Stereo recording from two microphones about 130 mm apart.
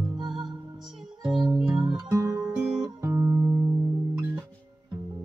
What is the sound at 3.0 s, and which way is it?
Music, 15° right (ahead or behind).